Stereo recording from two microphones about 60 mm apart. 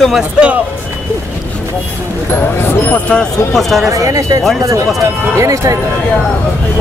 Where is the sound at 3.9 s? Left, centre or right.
Right.